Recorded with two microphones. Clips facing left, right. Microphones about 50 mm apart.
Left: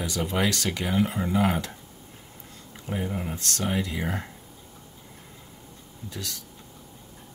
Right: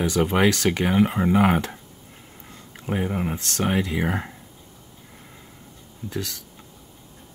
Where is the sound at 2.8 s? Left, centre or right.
Right.